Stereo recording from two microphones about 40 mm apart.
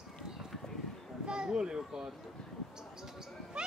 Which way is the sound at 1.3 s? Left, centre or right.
Centre.